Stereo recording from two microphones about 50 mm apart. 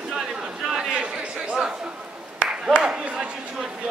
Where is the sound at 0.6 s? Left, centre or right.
Centre.